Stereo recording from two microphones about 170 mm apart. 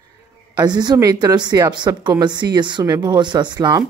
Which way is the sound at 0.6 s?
25° right (ahead or behind).